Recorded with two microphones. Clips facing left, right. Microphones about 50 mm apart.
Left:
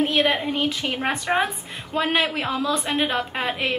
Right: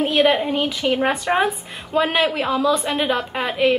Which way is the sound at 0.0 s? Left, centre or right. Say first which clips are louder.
Right 4 dB; centre.